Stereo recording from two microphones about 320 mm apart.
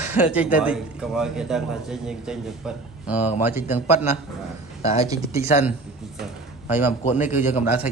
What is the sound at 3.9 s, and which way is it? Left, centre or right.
Speech, left.